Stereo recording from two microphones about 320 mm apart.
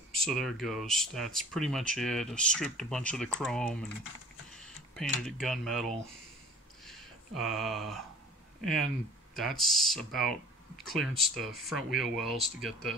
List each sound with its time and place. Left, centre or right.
0.1 s speech: centre